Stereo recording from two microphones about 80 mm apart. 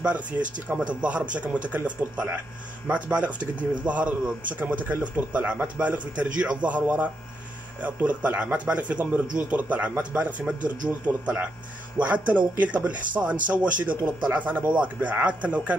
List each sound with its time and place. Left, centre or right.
0.0 s a man's voice: centre